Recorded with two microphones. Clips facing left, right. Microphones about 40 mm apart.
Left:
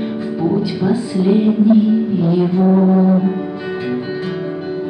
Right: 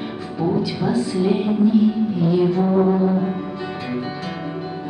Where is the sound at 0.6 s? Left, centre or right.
Centre.